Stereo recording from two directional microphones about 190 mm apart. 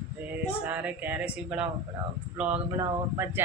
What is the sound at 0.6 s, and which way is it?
Speech, 10° right (ahead or behind).